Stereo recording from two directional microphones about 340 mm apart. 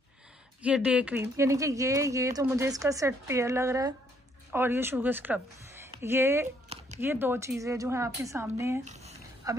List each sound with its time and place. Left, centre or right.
0.6 s speech: centre
8.8 s speech: centre